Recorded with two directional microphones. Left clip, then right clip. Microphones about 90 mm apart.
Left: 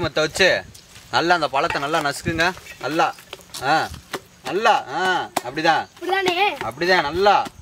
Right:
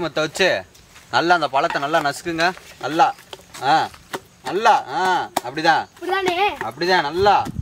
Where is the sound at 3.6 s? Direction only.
10° right (ahead or behind).